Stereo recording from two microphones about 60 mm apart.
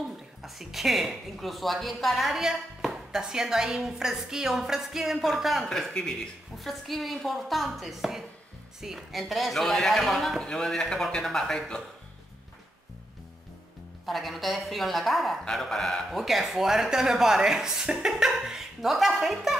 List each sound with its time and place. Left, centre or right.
0.4 s a woman's voice: centre
10.4 s speech: centre
14.0 s a woman's voice: centre